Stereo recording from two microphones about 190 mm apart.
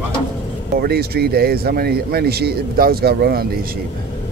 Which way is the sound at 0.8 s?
55° right (ahead or behind).